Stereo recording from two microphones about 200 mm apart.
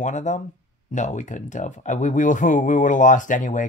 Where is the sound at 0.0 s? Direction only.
35° left (ahead or behind).